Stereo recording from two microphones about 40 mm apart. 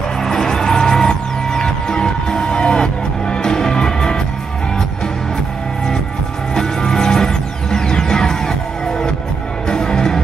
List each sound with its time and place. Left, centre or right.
0.2 s music: centre
6.5 s music: centre